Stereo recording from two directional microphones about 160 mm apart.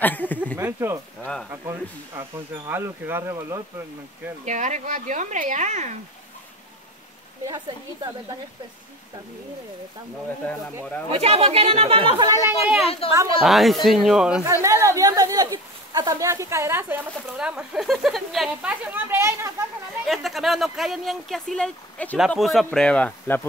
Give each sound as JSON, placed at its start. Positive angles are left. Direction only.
{"t": 0.0, "sound": "a man's voice", "side_deg": 10}
{"t": 0.6, "sound": "speech", "side_deg": -15}
{"t": 1.2, "sound": "speech", "side_deg": 5}
{"t": 1.5, "sound": "speech", "side_deg": -15}
{"t": 4.5, "sound": "a woman's voice", "side_deg": -50}
{"t": 7.4, "sound": "a woman's voice", "side_deg": -25}
{"t": 11.1, "sound": "speech", "side_deg": -40}
{"t": 12.4, "sound": "speech", "side_deg": -10}
{"t": 13.1, "sound": "a woman's voice", "side_deg": -20}
{"t": 13.4, "sound": "speech", "side_deg": 0}
{"t": 14.4, "sound": "speech", "side_deg": -20}
{"t": 20.1, "sound": "a man's voice", "side_deg": 0}